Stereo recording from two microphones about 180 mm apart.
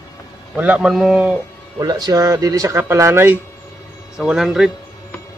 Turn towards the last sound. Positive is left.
turn(degrees=0)  # may be behind; listen again after turning